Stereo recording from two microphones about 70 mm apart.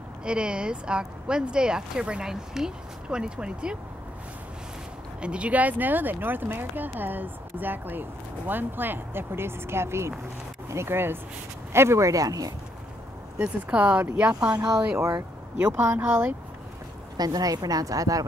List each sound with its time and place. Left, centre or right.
0.2 s a woman's voice: centre
5.2 s speech: centre; by 12.5 s right
13.4 s speech: right
15.0 s a woman's voice: right
15.6 s speech: right
17.2 s a woman's voice: right